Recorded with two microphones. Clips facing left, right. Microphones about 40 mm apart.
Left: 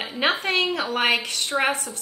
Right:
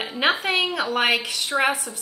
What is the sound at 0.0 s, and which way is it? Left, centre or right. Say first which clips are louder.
A woman's voice: right 1 dB; centre.